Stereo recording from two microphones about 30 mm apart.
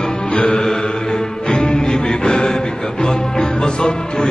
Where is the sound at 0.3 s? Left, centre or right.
Left.